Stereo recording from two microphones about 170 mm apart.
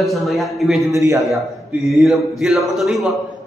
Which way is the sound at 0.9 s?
20° right (ahead or behind).